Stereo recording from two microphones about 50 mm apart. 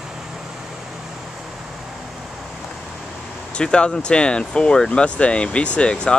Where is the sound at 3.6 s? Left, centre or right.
Centre.